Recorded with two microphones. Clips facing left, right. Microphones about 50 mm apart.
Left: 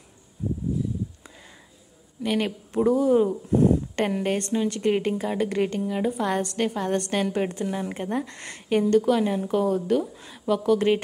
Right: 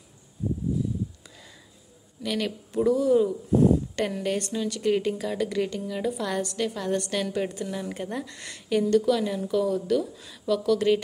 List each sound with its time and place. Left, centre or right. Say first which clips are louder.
2.2 s a woman's voice: left 3 dB; left
7.6 s a woman's voice: left 3 dB; left